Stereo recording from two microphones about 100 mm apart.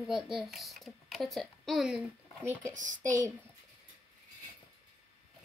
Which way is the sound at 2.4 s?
30° right (ahead or behind).